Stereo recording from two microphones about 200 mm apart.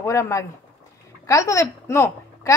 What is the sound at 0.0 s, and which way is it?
A woman's voice, 15° left (ahead or behind).